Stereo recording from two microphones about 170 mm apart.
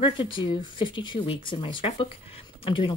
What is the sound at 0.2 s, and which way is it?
Speech, 30° left (ahead or behind).